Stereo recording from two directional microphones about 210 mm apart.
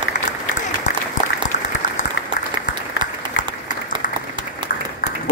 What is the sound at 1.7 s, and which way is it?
Applause, 35° left (ahead or behind).